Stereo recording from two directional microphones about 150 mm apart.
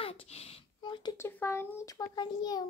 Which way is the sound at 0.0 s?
40° left (ahead or behind).